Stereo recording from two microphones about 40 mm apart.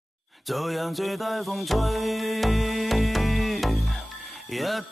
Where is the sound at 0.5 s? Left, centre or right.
Centre.